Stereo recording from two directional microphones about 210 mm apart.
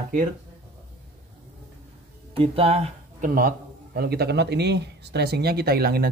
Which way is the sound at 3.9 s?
50° right (ahead or behind).